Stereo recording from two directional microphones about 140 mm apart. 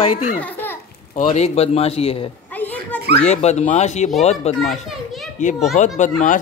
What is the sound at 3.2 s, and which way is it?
Speech, 50° left (ahead or behind).